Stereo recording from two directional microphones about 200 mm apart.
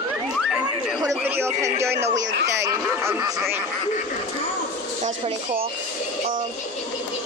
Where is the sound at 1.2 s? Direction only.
10° right (ahead or behind).